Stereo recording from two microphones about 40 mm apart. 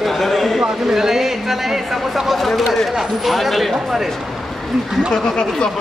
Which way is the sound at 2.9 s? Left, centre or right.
Centre.